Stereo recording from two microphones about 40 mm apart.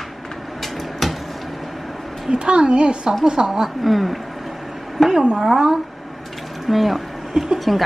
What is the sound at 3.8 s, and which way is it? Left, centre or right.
Speech, centre.